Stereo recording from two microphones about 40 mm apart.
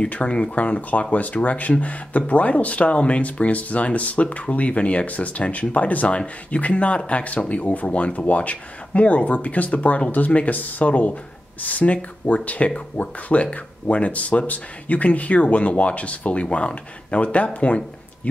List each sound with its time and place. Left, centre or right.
0.0 s speech: left